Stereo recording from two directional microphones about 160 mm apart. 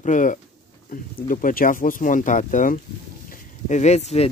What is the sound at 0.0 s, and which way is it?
Speech, 55° left (ahead or behind).